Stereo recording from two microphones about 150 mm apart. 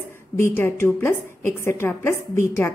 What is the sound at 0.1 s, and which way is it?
A woman's voice, 15° left (ahead or behind).